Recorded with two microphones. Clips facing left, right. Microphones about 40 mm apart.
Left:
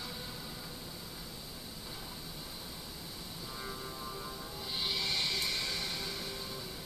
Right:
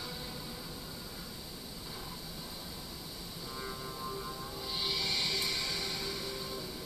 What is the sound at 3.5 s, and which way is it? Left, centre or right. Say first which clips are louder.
Vehicle: right 1 dB; centre.